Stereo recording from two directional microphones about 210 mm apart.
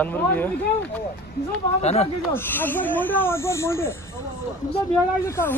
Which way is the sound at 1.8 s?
30° left (ahead or behind).